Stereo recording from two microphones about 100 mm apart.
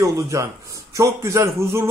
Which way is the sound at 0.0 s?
30° right (ahead or behind).